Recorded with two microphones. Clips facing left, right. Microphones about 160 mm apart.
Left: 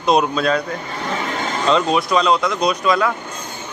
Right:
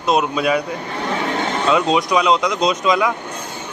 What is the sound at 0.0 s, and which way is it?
Speech, 5° right (ahead or behind).